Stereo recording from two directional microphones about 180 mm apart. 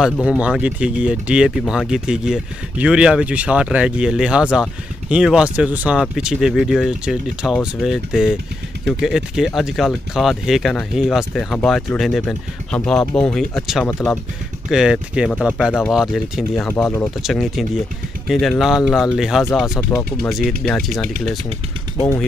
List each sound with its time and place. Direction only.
0.0 s speech: 5° right (ahead or behind)